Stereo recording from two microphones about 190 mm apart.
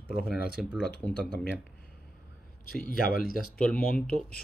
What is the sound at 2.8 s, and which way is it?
Speech, 50° left (ahead or behind).